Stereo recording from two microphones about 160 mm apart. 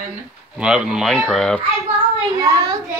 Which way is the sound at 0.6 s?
5° right (ahead or behind).